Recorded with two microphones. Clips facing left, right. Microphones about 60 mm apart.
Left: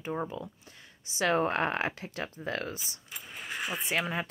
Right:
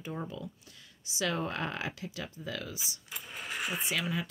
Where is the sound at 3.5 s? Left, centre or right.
Centre.